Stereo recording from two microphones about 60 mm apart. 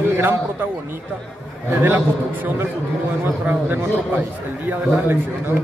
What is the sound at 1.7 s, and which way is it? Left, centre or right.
A man's voice, right.